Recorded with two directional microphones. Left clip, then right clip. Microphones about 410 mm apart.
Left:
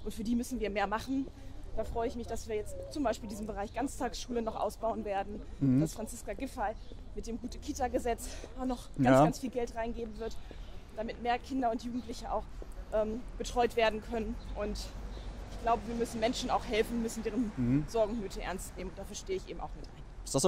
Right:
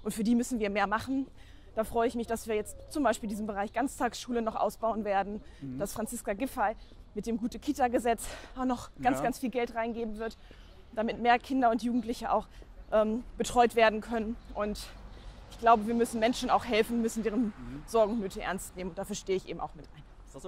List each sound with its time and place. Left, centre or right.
0.0 s speech: right
1.8 s speech: right
3.3 s speech: right
11.0 s speech: right
15.6 s speech: right
16.3 s speech: right
18.9 s speech: right